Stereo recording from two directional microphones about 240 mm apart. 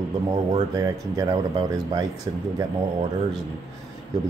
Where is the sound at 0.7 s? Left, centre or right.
Centre.